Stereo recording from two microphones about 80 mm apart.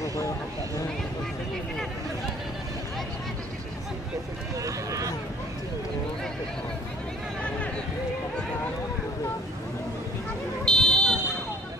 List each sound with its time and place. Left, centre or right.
0.0 s a sound: left
4.6 s run: right
10.6 s buzzer: centre